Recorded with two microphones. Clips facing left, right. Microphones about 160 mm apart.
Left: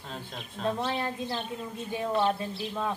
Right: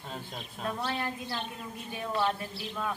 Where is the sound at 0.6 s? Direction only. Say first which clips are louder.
Left 4 dB; 25° left (ahead or behind).